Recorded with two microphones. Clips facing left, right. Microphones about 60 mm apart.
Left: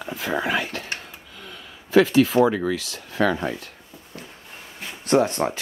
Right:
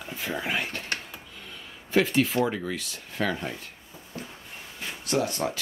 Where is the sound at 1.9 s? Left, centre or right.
Left.